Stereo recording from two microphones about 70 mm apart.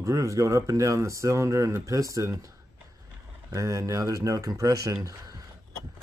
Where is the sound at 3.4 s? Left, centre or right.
Right.